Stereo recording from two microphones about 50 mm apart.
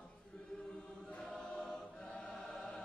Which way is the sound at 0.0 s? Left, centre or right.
Centre.